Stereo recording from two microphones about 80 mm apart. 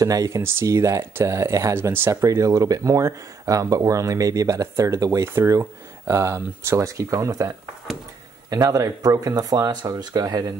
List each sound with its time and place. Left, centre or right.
0.0 s speech: right
2.2 s speech: right